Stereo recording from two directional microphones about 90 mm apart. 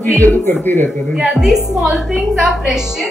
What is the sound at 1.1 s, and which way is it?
Speech, 5° right (ahead or behind).